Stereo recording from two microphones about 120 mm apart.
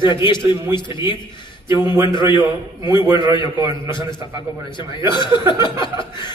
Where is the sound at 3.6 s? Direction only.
20° right (ahead or behind).